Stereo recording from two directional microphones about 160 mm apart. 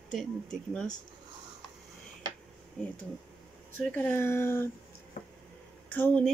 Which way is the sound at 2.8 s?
10° left (ahead or behind).